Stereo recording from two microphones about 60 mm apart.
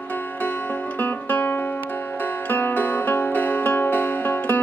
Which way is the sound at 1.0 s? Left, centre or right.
Left.